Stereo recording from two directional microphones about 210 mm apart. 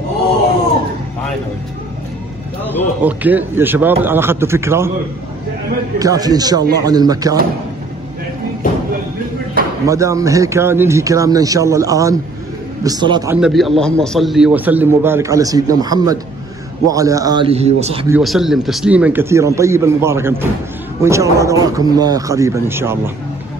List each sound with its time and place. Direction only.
3.0 s a man's voice: 10° right (ahead or behind)
5.9 s a man's voice: 15° right (ahead or behind)
9.8 s a man's voice: 15° right (ahead or behind)
13.4 s a man's voice: centre (ahead or behind); by 18.0 s 30° right (ahead or behind)
18.2 s a man's voice: centre (ahead or behind)